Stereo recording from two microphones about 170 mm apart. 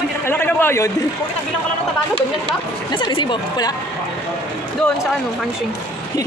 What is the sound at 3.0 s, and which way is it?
Speech, 30° left (ahead or behind).